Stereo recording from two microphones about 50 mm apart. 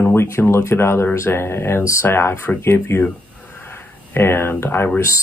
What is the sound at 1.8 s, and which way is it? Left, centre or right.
Speech, left.